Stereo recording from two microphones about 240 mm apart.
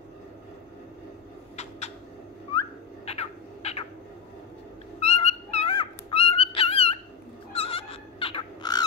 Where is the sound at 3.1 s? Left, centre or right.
Left.